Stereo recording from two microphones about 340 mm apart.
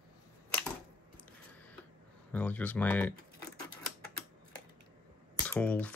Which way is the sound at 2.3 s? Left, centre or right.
Centre.